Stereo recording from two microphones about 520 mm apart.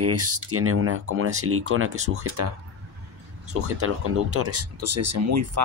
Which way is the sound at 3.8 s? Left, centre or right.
Right.